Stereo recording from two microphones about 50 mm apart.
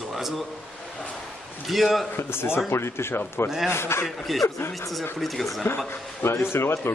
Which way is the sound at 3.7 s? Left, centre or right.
Left.